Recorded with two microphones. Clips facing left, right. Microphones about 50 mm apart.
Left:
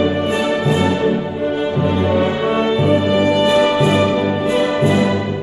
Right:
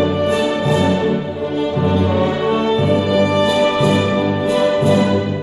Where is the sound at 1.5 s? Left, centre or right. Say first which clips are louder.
Right 3 dB; centre.